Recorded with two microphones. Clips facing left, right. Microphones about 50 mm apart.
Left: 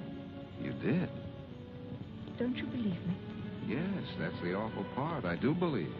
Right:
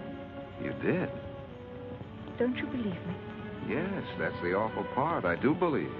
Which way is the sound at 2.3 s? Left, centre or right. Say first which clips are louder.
Right 5 dB; right.